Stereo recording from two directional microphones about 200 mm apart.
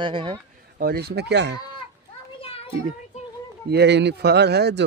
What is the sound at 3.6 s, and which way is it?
Speech, 55° right (ahead or behind).